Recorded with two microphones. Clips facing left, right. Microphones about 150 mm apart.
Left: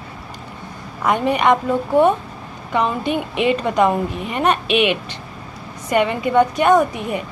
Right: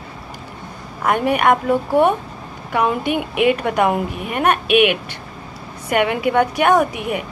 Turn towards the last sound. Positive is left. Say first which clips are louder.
# left 1 dB
turn(degrees=-10)  # may be behind; listen again after turning